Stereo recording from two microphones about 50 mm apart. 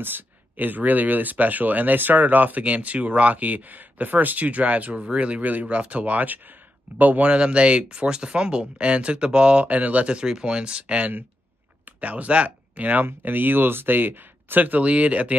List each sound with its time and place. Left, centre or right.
0.0 s speech: right
10.2 s speech: centre; by 13.0 s right
13.0 s speech: right